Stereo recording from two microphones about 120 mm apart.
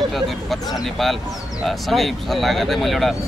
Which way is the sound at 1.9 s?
Centre (ahead or behind).